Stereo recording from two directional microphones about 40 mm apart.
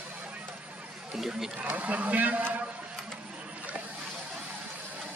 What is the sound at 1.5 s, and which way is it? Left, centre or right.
A man's voice, right.